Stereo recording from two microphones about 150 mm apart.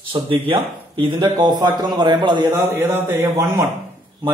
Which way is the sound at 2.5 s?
15° right (ahead or behind).